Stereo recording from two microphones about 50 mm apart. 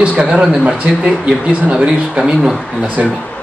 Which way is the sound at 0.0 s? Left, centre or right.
Right.